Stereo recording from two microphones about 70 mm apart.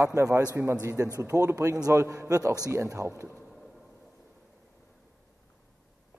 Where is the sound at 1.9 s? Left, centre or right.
Right.